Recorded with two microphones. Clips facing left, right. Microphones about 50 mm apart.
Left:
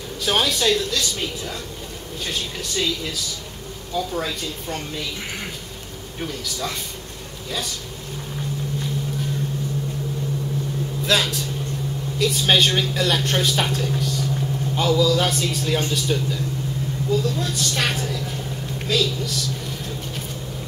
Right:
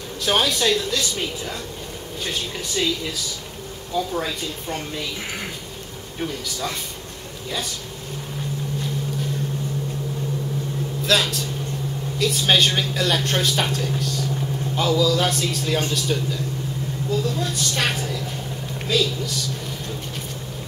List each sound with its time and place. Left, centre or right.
0.2 s speech: centre
3.9 s speech: centre
6.2 s speech: centre
11.1 s speech: centre